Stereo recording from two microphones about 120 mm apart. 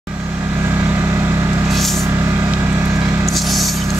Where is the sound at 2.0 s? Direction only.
20° right (ahead or behind).